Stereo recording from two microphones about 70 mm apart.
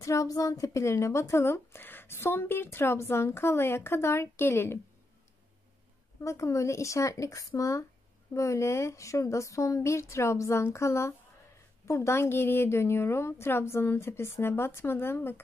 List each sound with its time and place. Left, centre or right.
0.0 s speech: left
6.2 s speech: left